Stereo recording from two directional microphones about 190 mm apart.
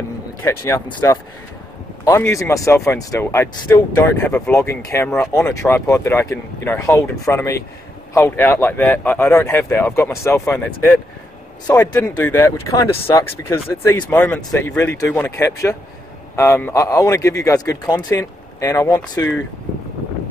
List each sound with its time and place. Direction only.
0.4 s speech: 15° left (ahead or behind)